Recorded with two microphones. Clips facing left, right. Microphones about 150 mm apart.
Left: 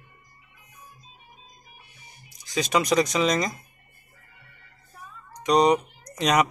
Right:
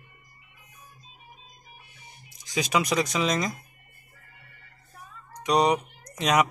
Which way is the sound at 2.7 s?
5° right (ahead or behind).